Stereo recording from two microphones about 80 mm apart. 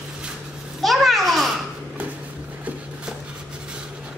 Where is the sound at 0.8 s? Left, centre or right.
Centre.